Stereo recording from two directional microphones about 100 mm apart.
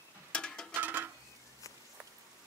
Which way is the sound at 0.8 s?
20° right (ahead or behind).